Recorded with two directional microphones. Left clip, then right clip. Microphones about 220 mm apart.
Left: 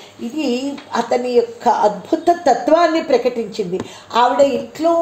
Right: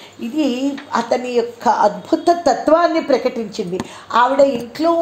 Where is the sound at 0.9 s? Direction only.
25° right (ahead or behind).